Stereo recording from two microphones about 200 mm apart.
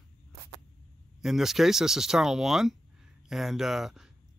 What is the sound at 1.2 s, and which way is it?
Speech, centre (ahead or behind).